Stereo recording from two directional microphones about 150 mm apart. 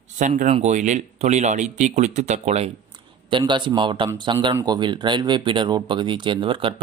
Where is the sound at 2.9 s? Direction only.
30° right (ahead or behind).